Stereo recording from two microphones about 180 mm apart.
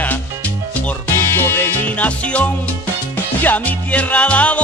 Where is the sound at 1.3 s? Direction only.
10° left (ahead or behind).